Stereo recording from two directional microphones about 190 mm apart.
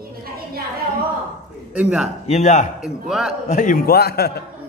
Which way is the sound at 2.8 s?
5° right (ahead or behind).